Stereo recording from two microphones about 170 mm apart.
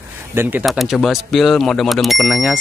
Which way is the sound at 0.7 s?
Centre (ahead or behind).